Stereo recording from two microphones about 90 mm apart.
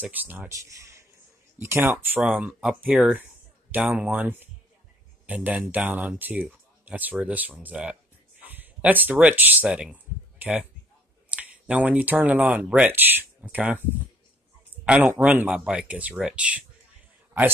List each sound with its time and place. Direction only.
0.0 s speech: 20° right (ahead or behind)
0.5 s speech: 35° right (ahead or behind)
1.6 s speech: 25° right (ahead or behind)
14.9 s speech: 20° right (ahead or behind)